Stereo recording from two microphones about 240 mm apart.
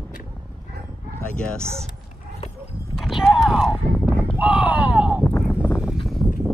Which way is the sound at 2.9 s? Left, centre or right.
Centre.